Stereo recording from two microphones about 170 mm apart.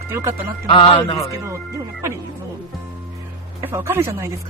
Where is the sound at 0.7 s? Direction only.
30° left (ahead or behind).